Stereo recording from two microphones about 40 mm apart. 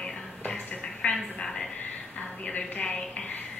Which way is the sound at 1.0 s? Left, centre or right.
Left.